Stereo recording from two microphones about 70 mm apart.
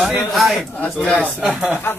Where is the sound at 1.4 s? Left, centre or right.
Centre.